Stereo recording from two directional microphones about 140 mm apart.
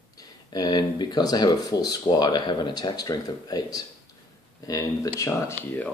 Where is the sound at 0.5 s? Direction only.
30° left (ahead or behind).